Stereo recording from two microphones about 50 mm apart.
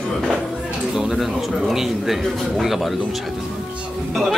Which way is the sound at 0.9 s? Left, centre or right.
Centre.